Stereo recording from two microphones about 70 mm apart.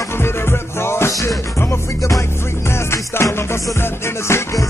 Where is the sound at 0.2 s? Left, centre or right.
Left.